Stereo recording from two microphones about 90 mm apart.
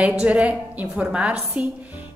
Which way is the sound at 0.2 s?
15° right (ahead or behind).